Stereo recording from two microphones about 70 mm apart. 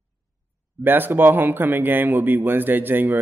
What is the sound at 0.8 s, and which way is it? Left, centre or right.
A man's voice, right.